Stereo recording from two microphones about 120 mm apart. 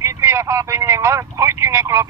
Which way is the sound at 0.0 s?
25° right (ahead or behind).